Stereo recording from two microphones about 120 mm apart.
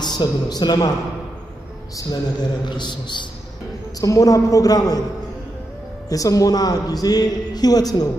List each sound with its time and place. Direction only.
0.0 s a man's voice: 35° left (ahead or behind)
2.0 s speech: 35° left (ahead or behind)
4.0 s a man's voice: 30° left (ahead or behind)
6.0 s speech: 30° left (ahead or behind)